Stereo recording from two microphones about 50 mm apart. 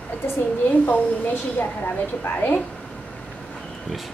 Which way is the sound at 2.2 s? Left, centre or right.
Left.